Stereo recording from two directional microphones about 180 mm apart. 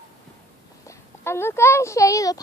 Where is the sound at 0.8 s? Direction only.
15° left (ahead or behind).